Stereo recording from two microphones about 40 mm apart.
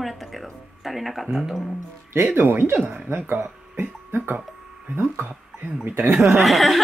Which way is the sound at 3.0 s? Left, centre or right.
Right.